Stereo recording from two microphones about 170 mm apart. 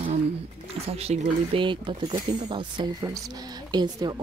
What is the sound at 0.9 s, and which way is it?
Speech, 35° right (ahead or behind).